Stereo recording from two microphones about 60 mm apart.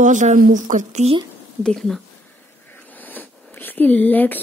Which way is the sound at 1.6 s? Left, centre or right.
Centre.